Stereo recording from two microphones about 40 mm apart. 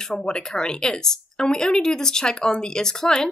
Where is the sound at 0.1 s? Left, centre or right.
Centre.